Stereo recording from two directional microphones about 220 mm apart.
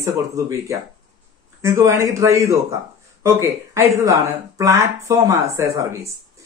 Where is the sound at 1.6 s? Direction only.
15° right (ahead or behind).